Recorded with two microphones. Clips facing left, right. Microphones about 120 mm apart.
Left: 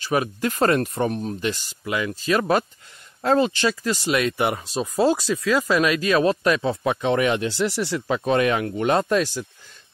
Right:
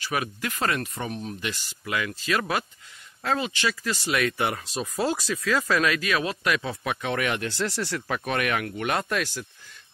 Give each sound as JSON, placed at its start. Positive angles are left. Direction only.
{"t": 0.0, "sound": "speech", "side_deg": 30}